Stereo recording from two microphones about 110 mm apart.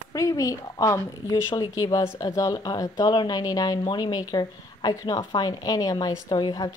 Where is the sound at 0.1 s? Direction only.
30° left (ahead or behind).